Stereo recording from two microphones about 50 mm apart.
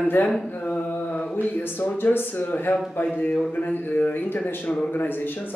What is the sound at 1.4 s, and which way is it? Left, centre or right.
Speech, left.